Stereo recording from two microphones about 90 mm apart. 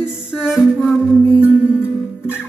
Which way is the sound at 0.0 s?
10° right (ahead or behind).